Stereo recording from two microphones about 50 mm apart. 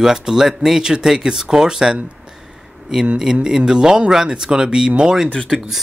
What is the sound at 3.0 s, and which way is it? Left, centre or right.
Speech, centre.